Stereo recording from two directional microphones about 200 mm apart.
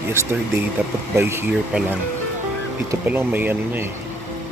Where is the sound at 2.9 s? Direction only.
10° right (ahead or behind).